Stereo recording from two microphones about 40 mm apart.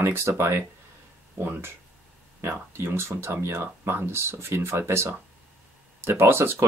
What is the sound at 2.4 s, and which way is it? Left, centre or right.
Speech, right.